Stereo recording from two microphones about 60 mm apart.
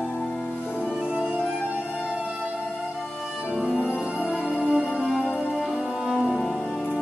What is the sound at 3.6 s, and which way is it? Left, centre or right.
Music, centre.